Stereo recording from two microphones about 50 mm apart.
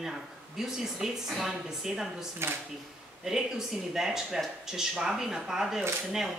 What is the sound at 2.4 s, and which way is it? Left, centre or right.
Speech, right.